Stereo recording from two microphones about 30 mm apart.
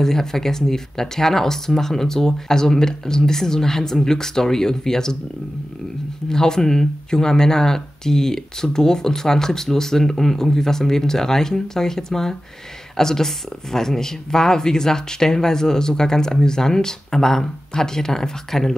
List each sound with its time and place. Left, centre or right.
0.0 s speech: centre
6.2 s speech: centre